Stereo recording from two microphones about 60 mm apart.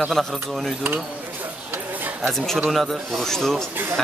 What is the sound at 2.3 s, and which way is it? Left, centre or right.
Speech, centre.